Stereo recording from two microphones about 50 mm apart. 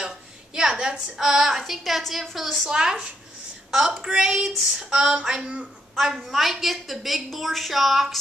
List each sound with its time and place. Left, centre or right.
0.6 s a woman's voice: centre
2.7 s a woman's voice: centre
6.1 s a woman's voice: centre